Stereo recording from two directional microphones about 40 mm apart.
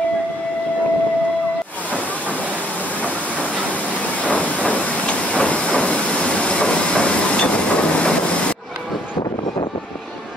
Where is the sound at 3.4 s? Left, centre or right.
Right.